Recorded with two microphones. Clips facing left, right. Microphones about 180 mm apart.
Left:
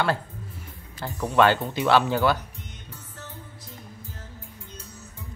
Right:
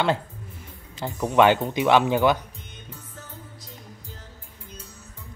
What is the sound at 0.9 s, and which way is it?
Speech, 20° right (ahead or behind).